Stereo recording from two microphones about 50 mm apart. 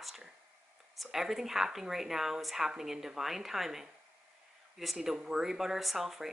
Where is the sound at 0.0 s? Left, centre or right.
Centre.